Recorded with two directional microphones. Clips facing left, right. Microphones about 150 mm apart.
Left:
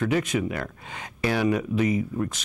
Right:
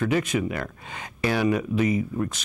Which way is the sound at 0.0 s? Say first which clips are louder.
Even; 5° right (ahead or behind).